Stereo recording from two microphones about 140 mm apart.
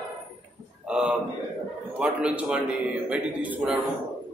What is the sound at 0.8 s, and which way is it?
A man's voice, 5° right (ahead or behind).